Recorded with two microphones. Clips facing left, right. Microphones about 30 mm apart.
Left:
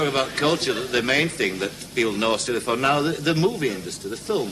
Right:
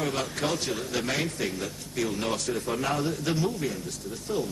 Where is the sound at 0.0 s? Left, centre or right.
Left.